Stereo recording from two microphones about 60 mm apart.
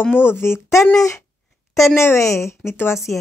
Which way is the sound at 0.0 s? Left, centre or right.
Left.